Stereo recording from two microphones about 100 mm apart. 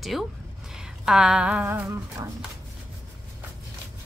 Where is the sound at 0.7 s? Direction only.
5° right (ahead or behind).